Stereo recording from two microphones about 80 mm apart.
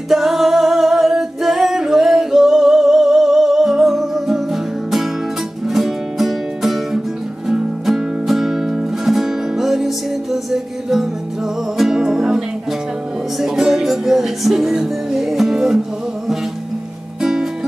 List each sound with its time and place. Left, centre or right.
0.1 s singing: centre
5.7 s music: centre
17.2 s music: centre